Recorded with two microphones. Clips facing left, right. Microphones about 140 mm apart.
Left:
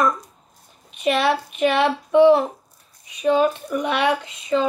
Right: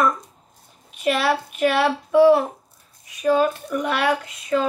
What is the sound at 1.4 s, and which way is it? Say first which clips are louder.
Speech: left 1 dB; 20° left (ahead or behind).